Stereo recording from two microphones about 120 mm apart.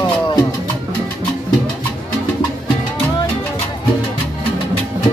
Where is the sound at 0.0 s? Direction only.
35° left (ahead or behind).